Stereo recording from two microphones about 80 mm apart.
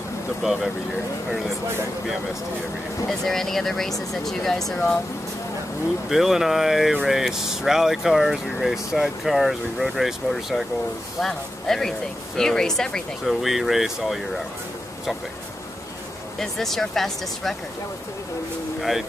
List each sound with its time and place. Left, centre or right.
0.4 s speech: centre
3.1 s speech: centre
6.0 s speech: centre
16.3 s speech: centre
18.8 s speech: centre